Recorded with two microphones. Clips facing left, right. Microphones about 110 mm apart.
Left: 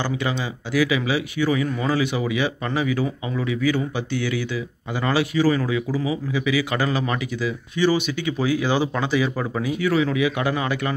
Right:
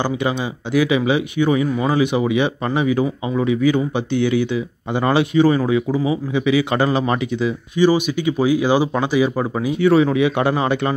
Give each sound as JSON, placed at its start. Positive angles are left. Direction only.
{"t": 0.7, "sound": "a man's voice", "side_deg": -25}